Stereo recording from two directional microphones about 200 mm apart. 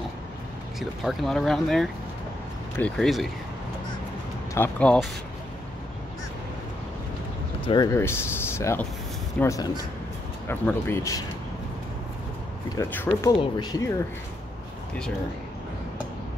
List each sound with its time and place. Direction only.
0.7 s speech: centre (ahead or behind)
4.6 s speech: 5° left (ahead or behind)
7.6 s speech: 20° left (ahead or behind)
12.7 s speech: 10° left (ahead or behind)